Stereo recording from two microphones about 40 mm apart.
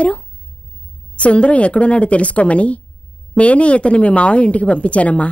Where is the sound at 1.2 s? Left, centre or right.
Left.